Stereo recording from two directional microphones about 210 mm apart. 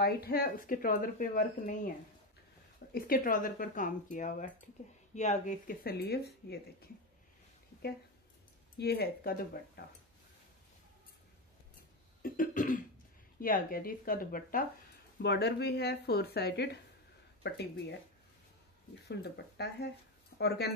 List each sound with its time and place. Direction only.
0.0 s speech: 45° left (ahead or behind)
2.9 s speech: 40° left (ahead or behind)
8.7 s speech: 50° left (ahead or behind)
12.2 s cough: 40° left (ahead or behind)
13.4 s speech: 40° left (ahead or behind)
19.0 s speech: 50° left (ahead or behind)